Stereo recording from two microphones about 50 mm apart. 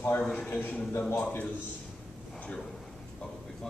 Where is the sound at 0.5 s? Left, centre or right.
Left.